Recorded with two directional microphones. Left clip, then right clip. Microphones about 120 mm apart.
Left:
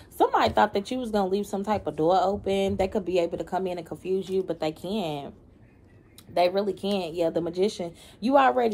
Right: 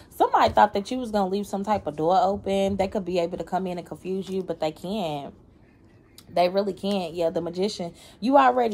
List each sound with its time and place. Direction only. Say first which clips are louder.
0.2 s speech: right 3 dB; 35° right (ahead or behind)
6.3 s speech: right 1 dB; 40° right (ahead or behind)